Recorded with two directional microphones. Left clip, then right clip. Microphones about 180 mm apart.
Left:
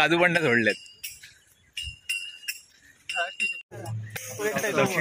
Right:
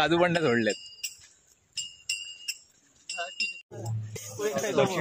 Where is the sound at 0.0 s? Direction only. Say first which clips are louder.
Left 3 dB; 5° right (ahead or behind).